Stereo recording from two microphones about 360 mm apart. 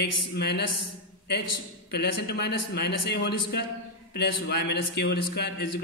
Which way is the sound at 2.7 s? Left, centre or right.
Left.